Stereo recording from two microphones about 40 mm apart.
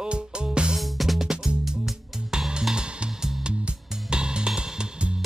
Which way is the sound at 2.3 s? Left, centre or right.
Centre.